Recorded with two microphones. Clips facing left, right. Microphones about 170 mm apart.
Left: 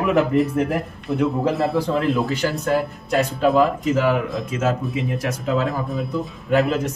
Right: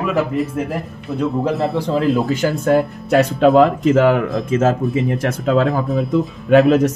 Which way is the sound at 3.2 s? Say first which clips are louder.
Right 5 dB; 70° right (ahead or behind).